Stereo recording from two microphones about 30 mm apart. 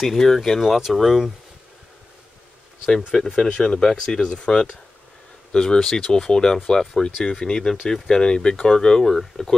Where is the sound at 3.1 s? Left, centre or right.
Centre.